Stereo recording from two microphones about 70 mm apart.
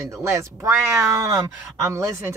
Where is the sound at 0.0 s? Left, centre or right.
Right.